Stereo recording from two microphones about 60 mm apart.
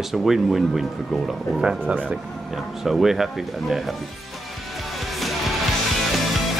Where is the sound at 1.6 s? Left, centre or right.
Centre.